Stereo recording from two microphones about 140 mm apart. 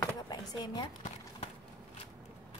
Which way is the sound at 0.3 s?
30° left (ahead or behind).